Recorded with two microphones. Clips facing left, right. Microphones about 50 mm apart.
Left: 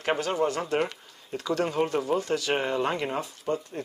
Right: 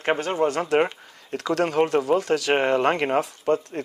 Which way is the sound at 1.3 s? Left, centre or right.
Right.